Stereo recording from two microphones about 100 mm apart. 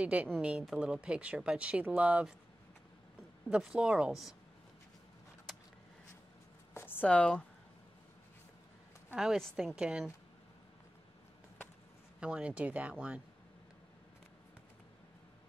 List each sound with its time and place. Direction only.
0.0 s speech: 15° right (ahead or behind)
3.4 s speech: 10° right (ahead or behind)
6.7 s a sound: 20° left (ahead or behind)
9.1 s a woman's voice: 5° right (ahead or behind)
12.2 s speech: 10° right (ahead or behind)